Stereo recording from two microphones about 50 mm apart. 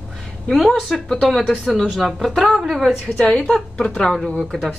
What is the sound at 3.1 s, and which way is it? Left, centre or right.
Speech, centre.